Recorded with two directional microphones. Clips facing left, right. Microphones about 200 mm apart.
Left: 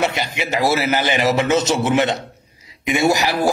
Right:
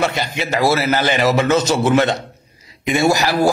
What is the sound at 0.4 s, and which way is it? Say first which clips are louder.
A man's voice: right 2 dB; 20° left (ahead or behind).